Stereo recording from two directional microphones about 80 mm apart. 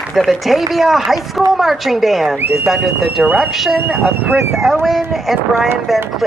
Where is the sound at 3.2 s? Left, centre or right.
Centre.